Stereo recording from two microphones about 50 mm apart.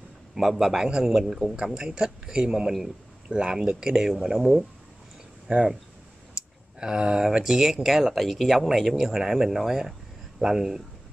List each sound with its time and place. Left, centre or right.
0.3 s a man's voice: centre
5.5 s speech: right
6.3 s a sound: centre
7.4 s speech: centre